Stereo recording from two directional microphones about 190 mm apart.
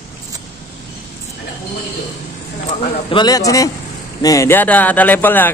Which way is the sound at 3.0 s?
25° left (ahead or behind).